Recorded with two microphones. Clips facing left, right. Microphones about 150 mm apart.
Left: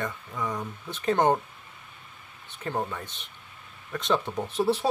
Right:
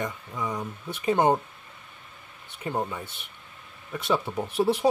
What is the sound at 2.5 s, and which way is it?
Speech, 10° right (ahead or behind).